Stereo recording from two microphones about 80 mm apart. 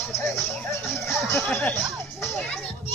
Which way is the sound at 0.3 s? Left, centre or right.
Left.